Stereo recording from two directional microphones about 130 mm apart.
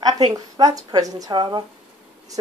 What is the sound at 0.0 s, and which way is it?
A woman's voice, 30° right (ahead or behind).